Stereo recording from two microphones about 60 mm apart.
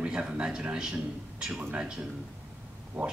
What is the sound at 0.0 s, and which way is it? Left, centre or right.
Speech, centre.